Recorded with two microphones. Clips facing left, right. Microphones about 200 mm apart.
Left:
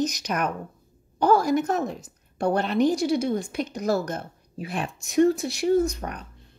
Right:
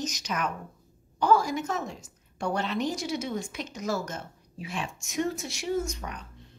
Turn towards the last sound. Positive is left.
turn(degrees=60)  # may be behind; listen again after turning